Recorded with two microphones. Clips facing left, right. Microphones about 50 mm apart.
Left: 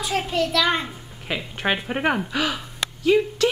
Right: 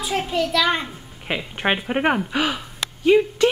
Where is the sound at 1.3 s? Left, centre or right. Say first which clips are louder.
Right 2 dB; centre.